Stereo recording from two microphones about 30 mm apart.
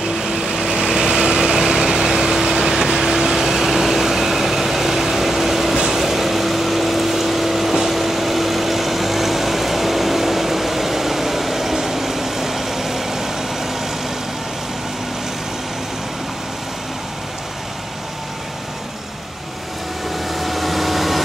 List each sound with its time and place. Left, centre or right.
0.1 s light engine: centre
2.3 s vehicle: centre
20.2 s vehicle: centre